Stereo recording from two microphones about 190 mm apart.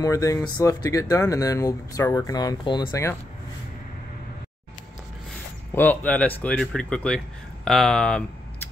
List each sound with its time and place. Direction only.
0.0 s speech: 15° left (ahead or behind)
5.7 s speech: 10° left (ahead or behind)